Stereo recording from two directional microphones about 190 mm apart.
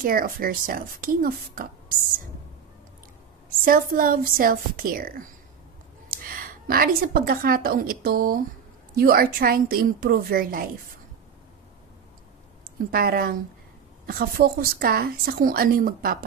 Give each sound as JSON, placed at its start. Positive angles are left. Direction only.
{"t": 0.0, "sound": "a woman's voice", "side_deg": -50}
{"t": 3.6, "sound": "a woman's voice", "side_deg": -50}
{"t": 12.9, "sound": "a woman's voice", "side_deg": -50}